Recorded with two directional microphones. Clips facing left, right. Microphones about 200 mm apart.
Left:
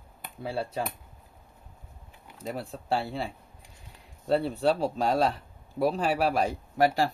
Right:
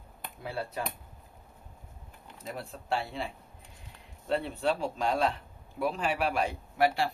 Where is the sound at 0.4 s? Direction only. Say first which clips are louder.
Left 4 dB; 30° left (ahead or behind).